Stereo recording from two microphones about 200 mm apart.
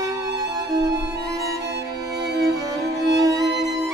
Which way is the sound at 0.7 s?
20° right (ahead or behind).